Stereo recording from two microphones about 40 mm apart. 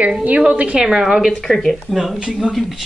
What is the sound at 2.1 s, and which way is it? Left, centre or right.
Speech, right.